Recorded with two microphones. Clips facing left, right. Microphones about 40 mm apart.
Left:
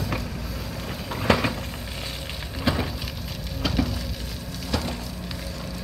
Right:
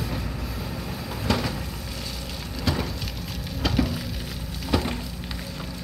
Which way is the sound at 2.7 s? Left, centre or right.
Left.